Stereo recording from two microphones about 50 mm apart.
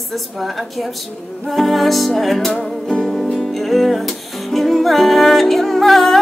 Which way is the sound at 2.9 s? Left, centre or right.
Centre.